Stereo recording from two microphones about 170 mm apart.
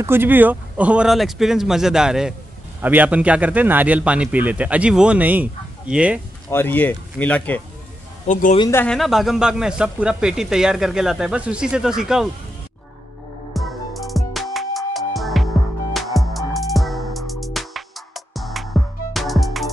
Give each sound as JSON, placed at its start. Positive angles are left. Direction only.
{"t": 0.0, "sound": "speech", "side_deg": -15}
{"t": 6.5, "sound": "speech", "side_deg": 10}
{"t": 8.3, "sound": "speech", "side_deg": 50}
{"t": 8.5, "sound": "speech", "side_deg": 20}
{"t": 8.8, "sound": "speech", "side_deg": 0}
{"t": 13.5, "sound": "music", "side_deg": 0}